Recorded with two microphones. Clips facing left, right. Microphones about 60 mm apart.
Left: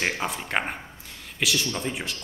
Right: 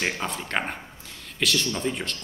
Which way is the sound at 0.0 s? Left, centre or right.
Centre.